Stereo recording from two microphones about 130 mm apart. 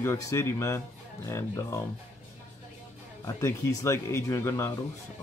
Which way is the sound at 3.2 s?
25° left (ahead or behind).